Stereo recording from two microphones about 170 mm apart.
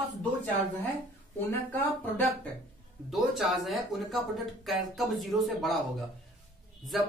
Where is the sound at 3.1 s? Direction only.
Centre (ahead or behind).